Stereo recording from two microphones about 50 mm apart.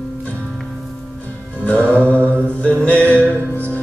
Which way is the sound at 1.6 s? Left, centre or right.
Left.